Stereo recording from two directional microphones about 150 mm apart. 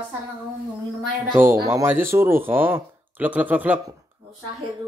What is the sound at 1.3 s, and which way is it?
A man's voice, 15° right (ahead or behind).